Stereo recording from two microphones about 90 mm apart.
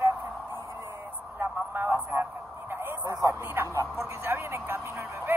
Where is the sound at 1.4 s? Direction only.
25° right (ahead or behind).